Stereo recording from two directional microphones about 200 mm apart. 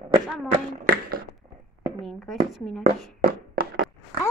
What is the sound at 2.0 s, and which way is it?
Speech, centre (ahead or behind).